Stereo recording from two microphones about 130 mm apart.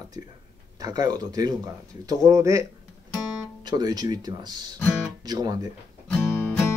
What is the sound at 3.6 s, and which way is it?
Speech, 35° right (ahead or behind).